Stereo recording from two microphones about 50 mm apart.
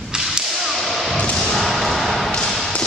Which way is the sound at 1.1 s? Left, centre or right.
Centre.